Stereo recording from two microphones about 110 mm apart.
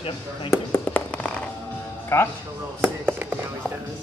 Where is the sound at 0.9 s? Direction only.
10° left (ahead or behind).